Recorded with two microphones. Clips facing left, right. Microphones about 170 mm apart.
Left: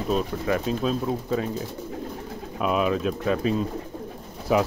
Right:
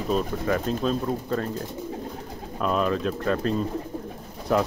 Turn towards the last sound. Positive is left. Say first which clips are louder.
# left 1 dB
turn(degrees=5)  # may be behind; listen again after turning